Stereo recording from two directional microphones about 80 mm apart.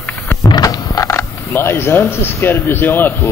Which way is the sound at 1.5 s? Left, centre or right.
Left.